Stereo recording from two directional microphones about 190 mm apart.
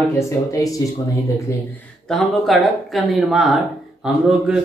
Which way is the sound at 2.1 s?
Centre (ahead or behind).